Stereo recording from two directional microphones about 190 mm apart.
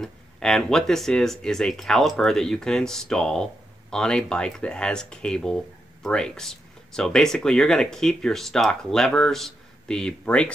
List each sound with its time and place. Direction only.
0.0 s speech: 5° left (ahead or behind)